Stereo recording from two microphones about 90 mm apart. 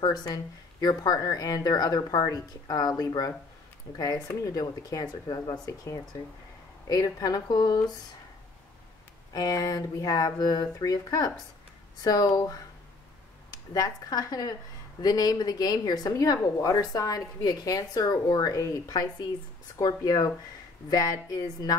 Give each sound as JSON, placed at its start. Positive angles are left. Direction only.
{"t": 0.0, "sound": "speech", "side_deg": 50}
{"t": 4.5, "sound": "speech", "side_deg": 45}
{"t": 9.3, "sound": "speech", "side_deg": 45}
{"t": 13.7, "sound": "speech", "side_deg": 45}